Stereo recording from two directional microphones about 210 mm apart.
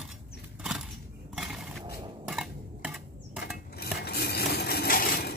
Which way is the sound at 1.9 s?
20° right (ahead or behind).